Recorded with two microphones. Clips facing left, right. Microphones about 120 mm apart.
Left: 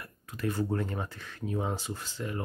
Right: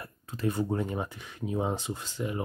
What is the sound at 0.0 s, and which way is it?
Speech, 25° right (ahead or behind).